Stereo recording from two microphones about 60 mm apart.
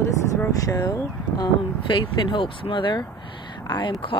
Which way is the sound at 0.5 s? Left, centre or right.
Left.